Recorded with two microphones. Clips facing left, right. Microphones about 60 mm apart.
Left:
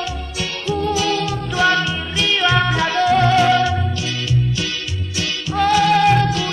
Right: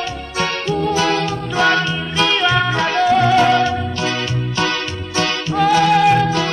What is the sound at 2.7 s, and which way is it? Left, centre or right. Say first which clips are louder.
Music: right 1 dB; right.